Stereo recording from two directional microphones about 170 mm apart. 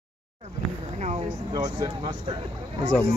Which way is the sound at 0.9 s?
45° right (ahead or behind).